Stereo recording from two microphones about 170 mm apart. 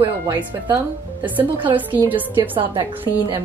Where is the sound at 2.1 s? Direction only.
30° right (ahead or behind).